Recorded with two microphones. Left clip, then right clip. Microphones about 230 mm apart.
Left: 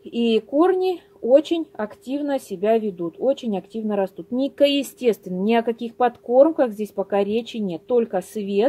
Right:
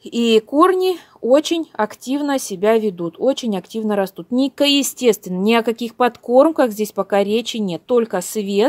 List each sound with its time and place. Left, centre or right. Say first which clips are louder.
0.1 s speech: right 5 dB; right